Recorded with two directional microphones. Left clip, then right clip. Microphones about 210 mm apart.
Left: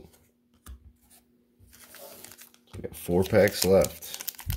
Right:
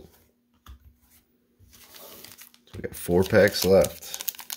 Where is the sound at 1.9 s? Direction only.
10° left (ahead or behind).